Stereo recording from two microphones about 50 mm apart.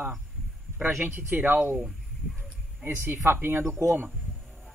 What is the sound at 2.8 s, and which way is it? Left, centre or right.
Speech, right.